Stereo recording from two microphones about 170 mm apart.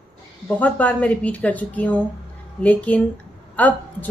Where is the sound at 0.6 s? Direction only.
10° left (ahead or behind).